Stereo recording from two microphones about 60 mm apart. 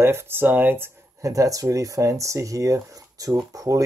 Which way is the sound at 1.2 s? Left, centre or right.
Right.